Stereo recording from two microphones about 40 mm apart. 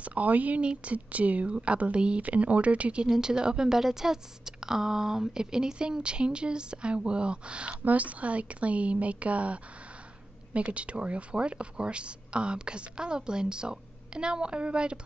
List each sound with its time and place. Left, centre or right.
0.0 s speech: right
0.6 s a woman's voice: right
0.9 s a woman's voice: right
3.1 s a woman's voice: centre
7.8 s a woman's voice: right